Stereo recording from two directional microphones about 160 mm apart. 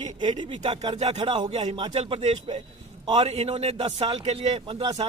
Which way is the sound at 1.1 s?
40° right (ahead or behind).